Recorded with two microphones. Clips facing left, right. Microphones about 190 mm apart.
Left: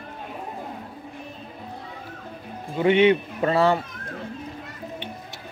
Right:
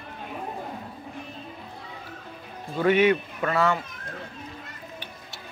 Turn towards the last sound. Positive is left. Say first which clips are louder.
# left 4 dB
turn(degrees=30)  # may be behind; listen again after turning